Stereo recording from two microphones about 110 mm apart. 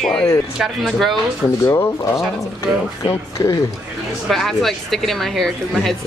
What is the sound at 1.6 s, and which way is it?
Speech, 25° left (ahead or behind).